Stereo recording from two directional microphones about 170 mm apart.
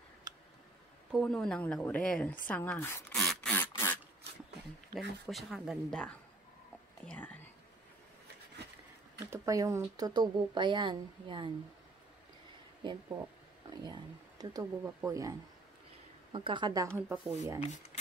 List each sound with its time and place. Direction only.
1.1 s speech: 5° left (ahead or behind)
3.2 s a sound: 5° left (ahead or behind)
4.9 s speech: centre (ahead or behind)
9.3 s a woman's voice: 20° right (ahead or behind)
14.4 s a woman's voice: 20° right (ahead or behind)
16.3 s a woman's voice: 30° right (ahead or behind); by 17.6 s 10° right (ahead or behind)